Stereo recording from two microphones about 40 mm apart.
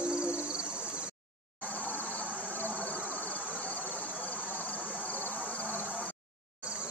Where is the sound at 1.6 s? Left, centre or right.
Left.